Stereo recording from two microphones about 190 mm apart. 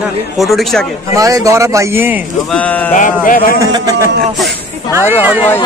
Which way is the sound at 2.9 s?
45° left (ahead or behind).